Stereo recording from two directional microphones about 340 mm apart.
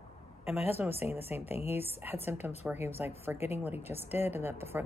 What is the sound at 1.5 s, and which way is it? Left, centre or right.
Speech, centre.